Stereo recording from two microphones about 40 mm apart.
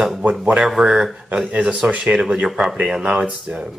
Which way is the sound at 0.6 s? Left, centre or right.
Centre.